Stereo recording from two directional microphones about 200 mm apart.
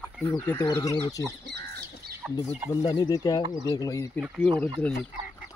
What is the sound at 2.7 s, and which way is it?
Speech, 20° left (ahead or behind).